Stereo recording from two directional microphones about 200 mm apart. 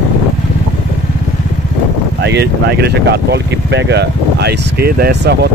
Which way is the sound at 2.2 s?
55° right (ahead or behind).